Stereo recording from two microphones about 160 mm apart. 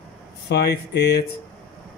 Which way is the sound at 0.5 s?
90° left.